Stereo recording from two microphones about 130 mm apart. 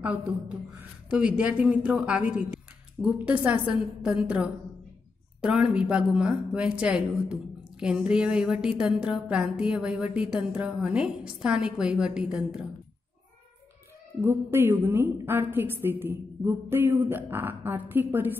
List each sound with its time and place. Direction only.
0.0 s a woman's voice: 10° right (ahead or behind)
14.2 s a woman's voice: 15° right (ahead or behind)